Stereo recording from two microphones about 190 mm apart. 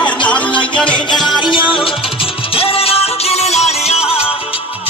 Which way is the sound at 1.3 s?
25° left (ahead or behind).